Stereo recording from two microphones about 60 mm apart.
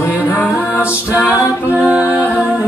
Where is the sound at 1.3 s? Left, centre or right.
Right.